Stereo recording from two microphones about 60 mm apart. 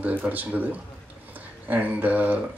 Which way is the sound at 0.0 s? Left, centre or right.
Right.